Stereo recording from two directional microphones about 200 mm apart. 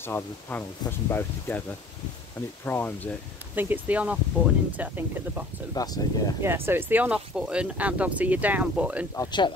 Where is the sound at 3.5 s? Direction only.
10° right (ahead or behind).